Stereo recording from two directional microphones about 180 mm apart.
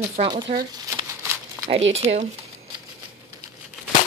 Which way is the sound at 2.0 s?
40° right (ahead or behind).